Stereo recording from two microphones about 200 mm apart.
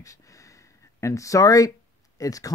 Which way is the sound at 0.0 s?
15° left (ahead or behind).